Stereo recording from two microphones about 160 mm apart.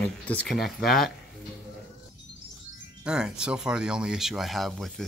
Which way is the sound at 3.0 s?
5° right (ahead or behind).